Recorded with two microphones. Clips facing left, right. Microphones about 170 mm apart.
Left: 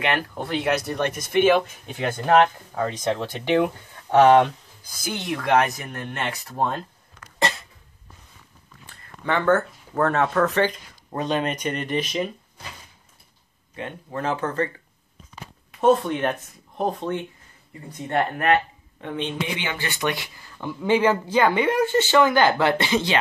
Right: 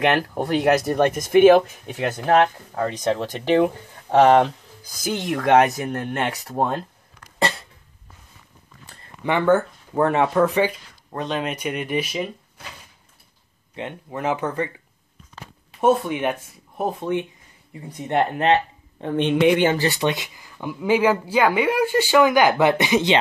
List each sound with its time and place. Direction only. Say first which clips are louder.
0.0 s speech: right 5 dB; 40° right (ahead or behind)
2.7 s speech: right 2 dB; 40° right (ahead or behind)
9.2 s speech: right 2 dB; 15° right (ahead or behind)
11.1 s speech: left 1 dB; centre (ahead or behind)
13.7 s speech: right 1 dB; 20° right (ahead or behind)
15.8 s speech: even; 10° right (ahead or behind); by 19.1 s 30° right (ahead or behind)
19.1 s speech: right 11 dB; 65° right (ahead or behind)
19.6 s speech: right 9 dB; 35° right (ahead or behind)
20.1 s speech: right 3 dB; 15° right (ahead or behind)